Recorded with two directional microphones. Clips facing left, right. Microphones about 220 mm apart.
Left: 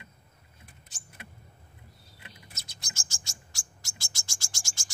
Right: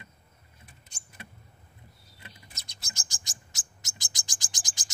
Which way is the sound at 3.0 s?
15° right (ahead or behind).